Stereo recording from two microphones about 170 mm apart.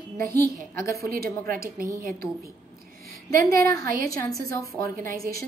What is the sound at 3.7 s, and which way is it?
Speech, 60° right (ahead or behind).